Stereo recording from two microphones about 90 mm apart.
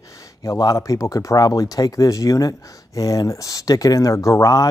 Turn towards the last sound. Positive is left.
turn(degrees=35)  # may be behind; listen again after turning